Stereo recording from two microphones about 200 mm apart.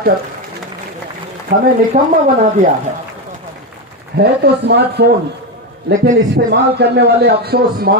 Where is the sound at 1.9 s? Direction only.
35° right (ahead or behind).